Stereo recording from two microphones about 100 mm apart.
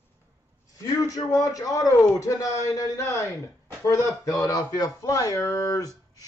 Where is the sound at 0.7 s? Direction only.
35° left (ahead or behind).